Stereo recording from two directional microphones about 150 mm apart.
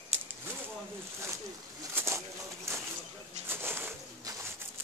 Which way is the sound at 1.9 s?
20° right (ahead or behind).